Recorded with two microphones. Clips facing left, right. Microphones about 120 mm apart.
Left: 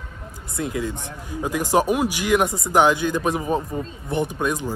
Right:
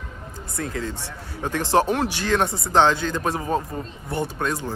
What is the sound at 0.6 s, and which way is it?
Speech, 15° left (ahead or behind).